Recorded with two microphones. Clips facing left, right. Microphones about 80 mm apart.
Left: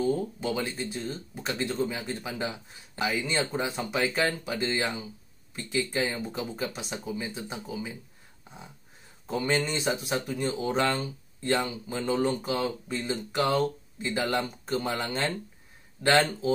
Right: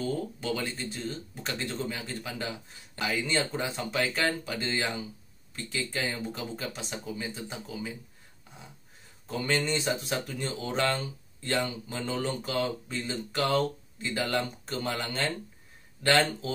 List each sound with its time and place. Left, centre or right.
0.0 s speech: left
9.3 s speech: left